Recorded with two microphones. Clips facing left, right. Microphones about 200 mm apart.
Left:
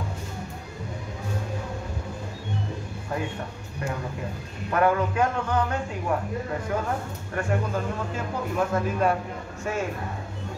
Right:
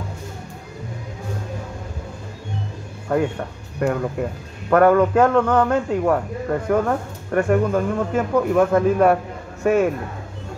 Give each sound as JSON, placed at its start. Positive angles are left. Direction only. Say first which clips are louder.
{"t": 3.8, "sound": "speech", "louder": "right 10 dB", "side_deg": -55}